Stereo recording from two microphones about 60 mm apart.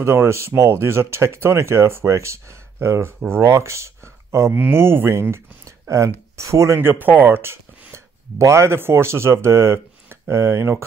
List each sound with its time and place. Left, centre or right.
0.0 s speech: right
4.6 s speech: right
6.8 s speech: right
7.9 s speech: right